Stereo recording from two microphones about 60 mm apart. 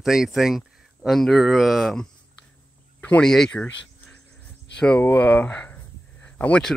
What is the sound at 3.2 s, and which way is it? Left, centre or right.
Speech, centre.